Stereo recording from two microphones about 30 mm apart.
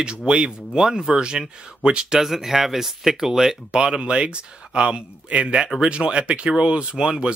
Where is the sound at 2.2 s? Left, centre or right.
Centre.